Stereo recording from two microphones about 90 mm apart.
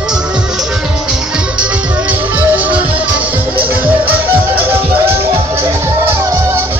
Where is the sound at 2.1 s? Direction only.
20° right (ahead or behind).